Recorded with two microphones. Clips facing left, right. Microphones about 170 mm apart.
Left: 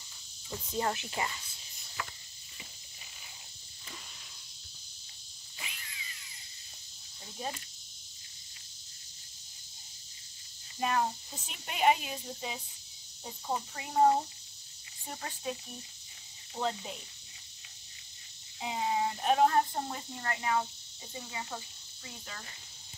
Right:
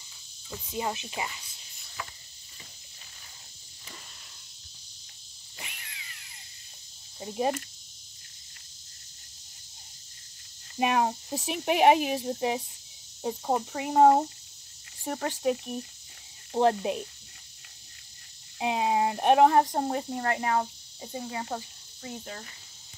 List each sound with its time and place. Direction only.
0.7 s speech: 10° right (ahead or behind)
5.6 s a sound: 55° right (ahead or behind)
7.2 s speech: 65° right (ahead or behind)
10.8 s speech: 70° right (ahead or behind)
18.6 s speech: 75° right (ahead or behind)
19.8 s speech: 55° right (ahead or behind)